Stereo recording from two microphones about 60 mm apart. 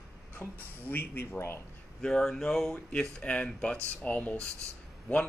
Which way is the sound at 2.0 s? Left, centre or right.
Centre.